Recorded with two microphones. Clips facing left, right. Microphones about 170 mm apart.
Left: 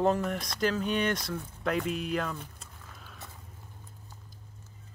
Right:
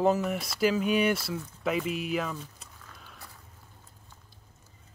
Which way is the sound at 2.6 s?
Centre (ahead or behind).